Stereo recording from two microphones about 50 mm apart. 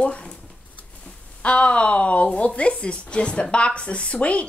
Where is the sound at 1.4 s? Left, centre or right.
Left.